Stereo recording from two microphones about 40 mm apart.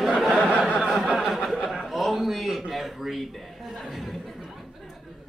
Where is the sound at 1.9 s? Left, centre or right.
Centre.